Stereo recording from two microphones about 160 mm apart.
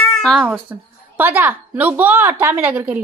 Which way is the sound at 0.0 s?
5° left (ahead or behind).